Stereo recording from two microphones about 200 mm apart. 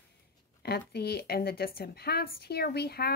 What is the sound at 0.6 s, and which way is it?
A woman's voice, 50° left (ahead or behind).